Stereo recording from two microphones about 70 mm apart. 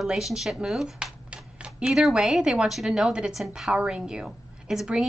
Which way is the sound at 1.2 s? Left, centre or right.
Centre.